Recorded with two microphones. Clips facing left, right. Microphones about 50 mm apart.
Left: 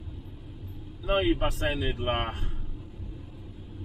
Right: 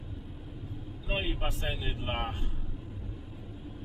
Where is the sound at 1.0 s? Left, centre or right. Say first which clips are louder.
Left 9 dB; left.